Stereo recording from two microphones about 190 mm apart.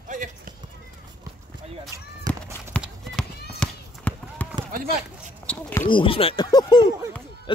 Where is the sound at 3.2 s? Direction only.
5° left (ahead or behind).